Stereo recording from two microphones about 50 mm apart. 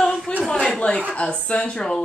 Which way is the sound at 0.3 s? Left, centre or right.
Left.